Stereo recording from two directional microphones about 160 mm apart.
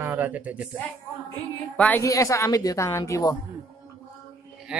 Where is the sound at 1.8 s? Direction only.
15° left (ahead or behind).